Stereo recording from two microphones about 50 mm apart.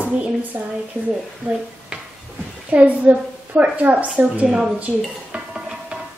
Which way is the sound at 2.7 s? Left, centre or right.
Right.